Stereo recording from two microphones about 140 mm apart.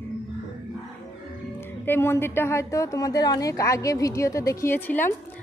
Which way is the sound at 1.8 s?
15° left (ahead or behind).